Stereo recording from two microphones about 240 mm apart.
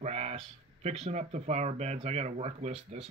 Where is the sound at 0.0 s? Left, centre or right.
Right.